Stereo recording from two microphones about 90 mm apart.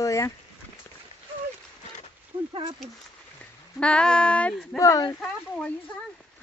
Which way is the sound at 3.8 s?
10° left (ahead or behind).